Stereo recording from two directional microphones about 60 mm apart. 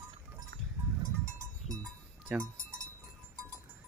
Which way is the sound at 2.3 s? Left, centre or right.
Centre.